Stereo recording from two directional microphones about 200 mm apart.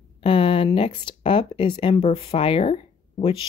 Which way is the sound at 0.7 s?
25° left (ahead or behind).